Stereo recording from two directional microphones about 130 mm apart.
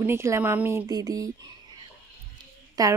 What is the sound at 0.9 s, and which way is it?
Speech, 30° right (ahead or behind).